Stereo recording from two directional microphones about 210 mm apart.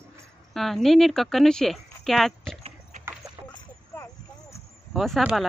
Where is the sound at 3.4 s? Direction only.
15° right (ahead or behind).